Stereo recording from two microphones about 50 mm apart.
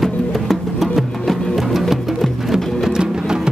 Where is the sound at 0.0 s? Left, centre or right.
Centre.